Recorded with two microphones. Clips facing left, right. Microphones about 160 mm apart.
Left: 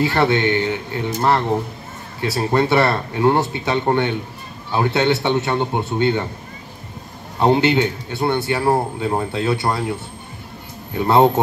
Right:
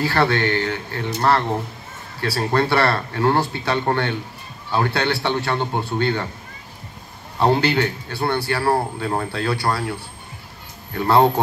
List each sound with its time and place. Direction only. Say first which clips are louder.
0.0 s speech: left 2 dB; 20° left (ahead or behind)
2.2 s speech: left 2 dB; 20° left (ahead or behind)
7.3 s speech: left 2 dB; 20° left (ahead or behind)